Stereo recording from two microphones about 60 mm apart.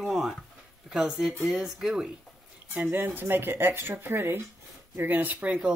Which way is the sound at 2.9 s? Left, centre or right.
Right.